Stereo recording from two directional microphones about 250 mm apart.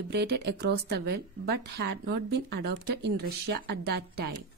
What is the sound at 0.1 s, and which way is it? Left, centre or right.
Speech, right.